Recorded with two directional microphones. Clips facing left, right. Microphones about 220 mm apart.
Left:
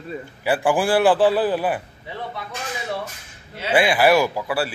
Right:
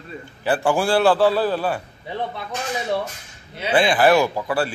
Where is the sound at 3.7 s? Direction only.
10° left (ahead or behind).